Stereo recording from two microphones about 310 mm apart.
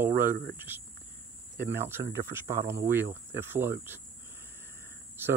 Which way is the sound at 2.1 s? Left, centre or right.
Centre.